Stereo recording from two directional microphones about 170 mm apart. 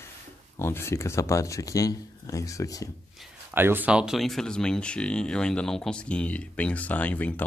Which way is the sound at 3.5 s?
10° right (ahead or behind).